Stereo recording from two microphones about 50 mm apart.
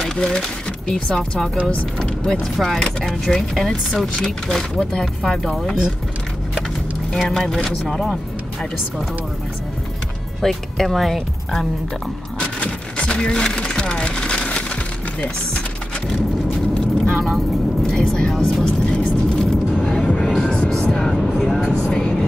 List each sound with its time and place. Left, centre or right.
0.0 s speech: centre
7.2 s speech: centre
10.4 s speech: centre
12.5 s a sound: left
17.1 s vehicle: centre
17.9 s music: centre
20.9 s vehicle: centre